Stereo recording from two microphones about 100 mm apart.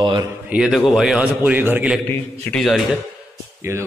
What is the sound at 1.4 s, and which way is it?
Speech, 15° right (ahead or behind).